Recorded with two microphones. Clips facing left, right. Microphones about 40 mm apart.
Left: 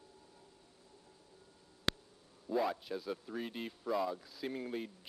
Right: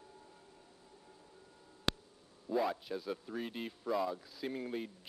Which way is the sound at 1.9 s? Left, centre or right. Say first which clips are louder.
Even; centre.